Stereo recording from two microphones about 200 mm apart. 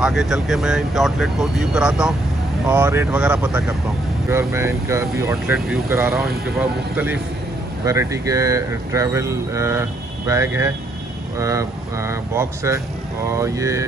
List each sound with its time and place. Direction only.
0.0 s speech: centre (ahead or behind)
7.8 s speech: 15° right (ahead or behind)